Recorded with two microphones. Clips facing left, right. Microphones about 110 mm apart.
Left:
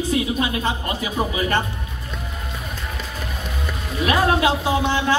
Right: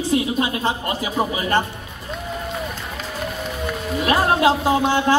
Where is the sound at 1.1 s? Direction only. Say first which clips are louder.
Right 1 dB; 30° right (ahead or behind).